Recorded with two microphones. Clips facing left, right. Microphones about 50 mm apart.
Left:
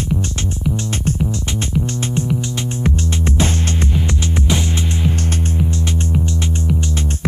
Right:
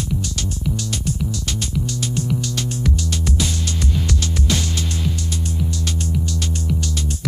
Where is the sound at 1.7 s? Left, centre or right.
Left.